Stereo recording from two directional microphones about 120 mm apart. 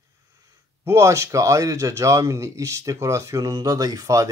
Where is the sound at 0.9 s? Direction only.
25° right (ahead or behind).